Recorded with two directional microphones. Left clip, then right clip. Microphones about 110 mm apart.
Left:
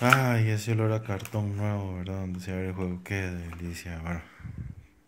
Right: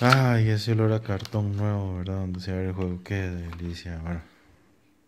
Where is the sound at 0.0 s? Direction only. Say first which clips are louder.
Right 1 dB; 55° right (ahead or behind); by 4.3 s 30° right (ahead or behind).